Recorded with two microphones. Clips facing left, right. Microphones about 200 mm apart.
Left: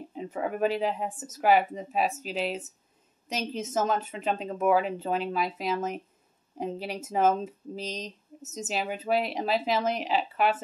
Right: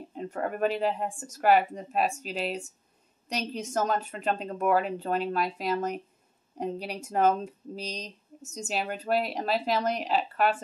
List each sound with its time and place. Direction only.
0.1 s a woman's voice: 5° left (ahead or behind)